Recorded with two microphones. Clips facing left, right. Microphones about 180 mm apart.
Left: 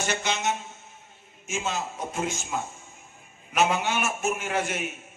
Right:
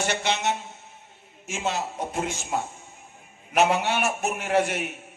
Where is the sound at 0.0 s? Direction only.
65° right (ahead or behind).